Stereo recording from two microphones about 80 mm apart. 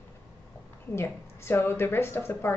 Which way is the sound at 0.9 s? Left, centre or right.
Left.